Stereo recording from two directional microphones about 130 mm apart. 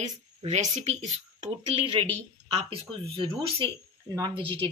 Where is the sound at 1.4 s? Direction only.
45° right (ahead or behind).